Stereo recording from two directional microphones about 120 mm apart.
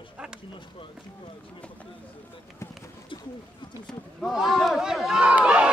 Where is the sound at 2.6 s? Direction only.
25° left (ahead or behind).